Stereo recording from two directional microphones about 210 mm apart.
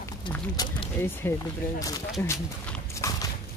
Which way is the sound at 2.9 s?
15° left (ahead or behind).